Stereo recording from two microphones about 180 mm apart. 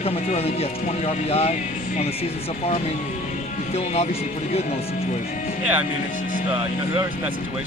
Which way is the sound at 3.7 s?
35° left (ahead or behind).